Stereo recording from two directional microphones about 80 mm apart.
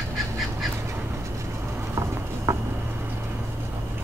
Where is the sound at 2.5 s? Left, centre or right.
Right.